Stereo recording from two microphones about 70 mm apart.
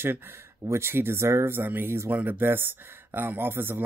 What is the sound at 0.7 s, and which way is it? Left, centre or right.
Speech, right.